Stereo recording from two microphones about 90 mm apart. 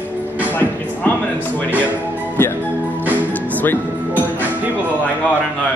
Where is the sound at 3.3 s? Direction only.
20° left (ahead or behind).